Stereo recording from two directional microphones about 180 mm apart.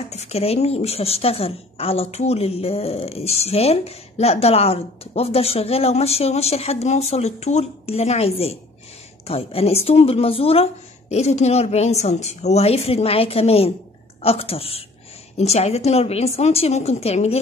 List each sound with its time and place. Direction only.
0.1 s a woman's voice: 35° left (ahead or behind)